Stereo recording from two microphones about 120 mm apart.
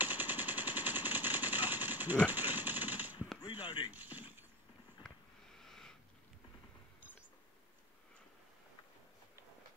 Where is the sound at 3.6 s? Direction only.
40° left (ahead or behind).